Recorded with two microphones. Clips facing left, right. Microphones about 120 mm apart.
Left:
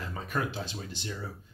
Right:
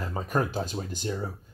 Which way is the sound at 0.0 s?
40° right (ahead or behind).